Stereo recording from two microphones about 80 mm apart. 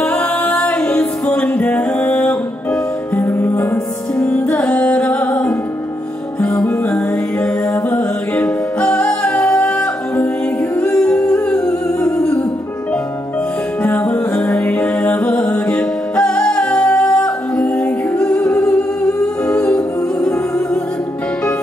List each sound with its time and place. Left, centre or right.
0.0 s a capella: centre
0.8 s music: centre
6.4 s music: centre
8.4 s music: centre
13.8 s music: centre
14.3 s music: centre
18.5 s humming: centre
20.2 s music: centre